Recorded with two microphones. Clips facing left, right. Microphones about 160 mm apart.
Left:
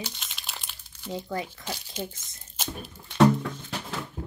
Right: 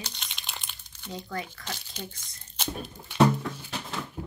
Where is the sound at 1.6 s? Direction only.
5° left (ahead or behind).